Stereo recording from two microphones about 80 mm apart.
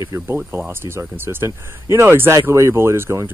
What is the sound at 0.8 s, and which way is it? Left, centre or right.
Speech, right.